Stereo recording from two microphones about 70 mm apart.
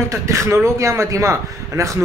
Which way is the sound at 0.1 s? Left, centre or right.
Right.